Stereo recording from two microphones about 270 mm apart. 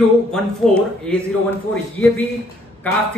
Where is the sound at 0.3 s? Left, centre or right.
Centre.